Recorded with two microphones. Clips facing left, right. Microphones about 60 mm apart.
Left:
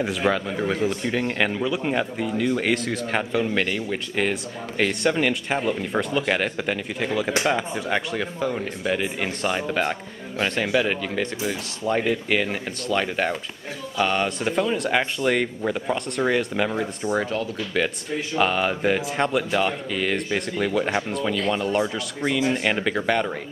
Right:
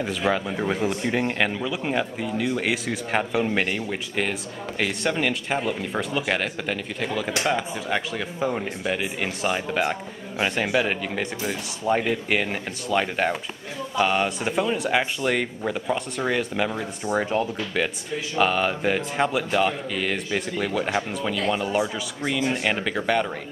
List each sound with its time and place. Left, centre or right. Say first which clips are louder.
0.0 s speech: left 2 dB; centre
0.3 s speech: even; centre
0.7 s speech: even; centre
1.4 s speech: left 2 dB; centre
4.2 s speech: left 3 dB; centre
8.4 s speech: right 2 dB; centre
8.8 s speech: left 4 dB; centre
17.3 s speech: right 2 dB; right
18.3 s speech: even; centre